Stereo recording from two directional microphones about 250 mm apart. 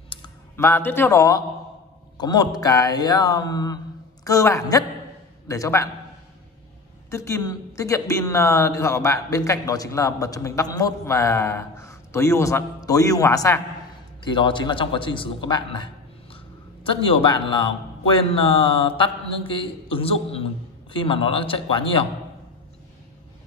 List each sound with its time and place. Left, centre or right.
0.1 s a woman's voice: centre
7.1 s a woman's voice: centre